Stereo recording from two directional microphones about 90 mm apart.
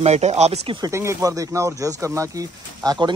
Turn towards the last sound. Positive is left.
turn(degrees=-45)  # may be behind; listen again after turning